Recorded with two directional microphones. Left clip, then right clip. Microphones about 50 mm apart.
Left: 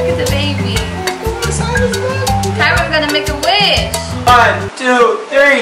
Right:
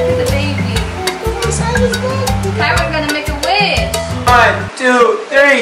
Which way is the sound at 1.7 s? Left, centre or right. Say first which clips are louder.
Left 2 dB; centre.